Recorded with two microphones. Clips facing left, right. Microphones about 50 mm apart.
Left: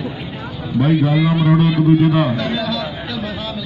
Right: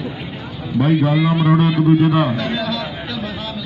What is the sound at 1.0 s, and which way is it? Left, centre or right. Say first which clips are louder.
A man's voice: even; centre.